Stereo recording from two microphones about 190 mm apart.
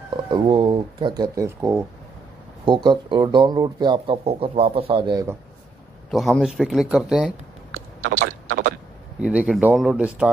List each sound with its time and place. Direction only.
0.1 s speech: 25° right (ahead or behind)
6.0 s speech: centre (ahead or behind)
8.2 s a sound: 45° right (ahead or behind)
9.2 s speech: 5° right (ahead or behind)